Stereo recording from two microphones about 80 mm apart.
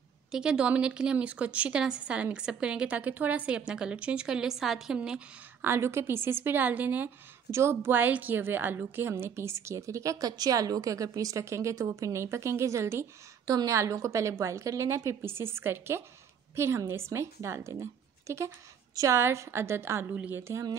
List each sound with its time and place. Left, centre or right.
0.3 s a woman's voice: centre
5.6 s a woman's voice: right
7.5 s a woman's voice: right